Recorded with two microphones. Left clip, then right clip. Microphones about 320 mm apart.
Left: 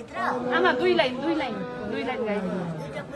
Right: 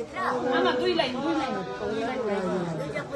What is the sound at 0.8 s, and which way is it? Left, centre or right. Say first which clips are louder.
Speech: left 3 dB; centre.